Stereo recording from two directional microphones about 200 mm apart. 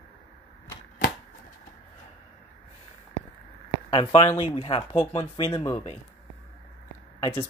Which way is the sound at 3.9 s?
25° left (ahead or behind).